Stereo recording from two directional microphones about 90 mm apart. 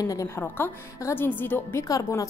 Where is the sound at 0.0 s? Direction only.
40° left (ahead or behind).